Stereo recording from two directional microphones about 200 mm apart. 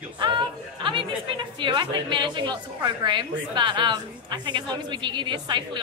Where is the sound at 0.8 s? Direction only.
25° right (ahead or behind).